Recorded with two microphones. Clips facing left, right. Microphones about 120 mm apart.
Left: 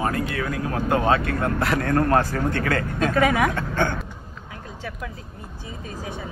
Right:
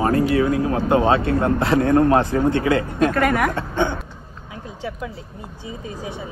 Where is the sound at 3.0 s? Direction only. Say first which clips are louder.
Even; centre (ahead or behind).